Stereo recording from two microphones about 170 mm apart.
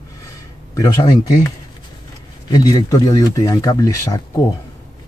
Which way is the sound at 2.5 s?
20° left (ahead or behind).